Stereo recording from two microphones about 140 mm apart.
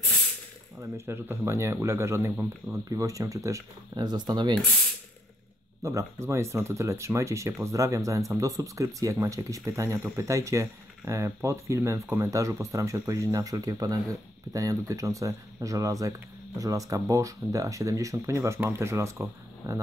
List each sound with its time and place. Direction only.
0.7 s speech: 15° right (ahead or behind)
5.8 s speech: 20° right (ahead or behind)